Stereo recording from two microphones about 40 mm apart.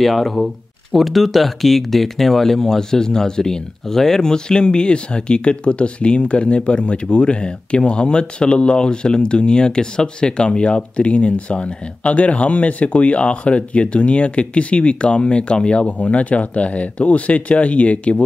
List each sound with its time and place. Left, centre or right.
0.0 s speech: centre; by 15.9 s left
16.0 s speech: left